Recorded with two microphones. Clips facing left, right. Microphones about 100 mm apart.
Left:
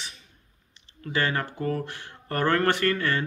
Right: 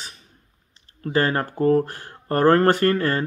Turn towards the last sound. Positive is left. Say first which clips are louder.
# right 5 dB
turn(degrees=-40)  # may be behind; listen again after turning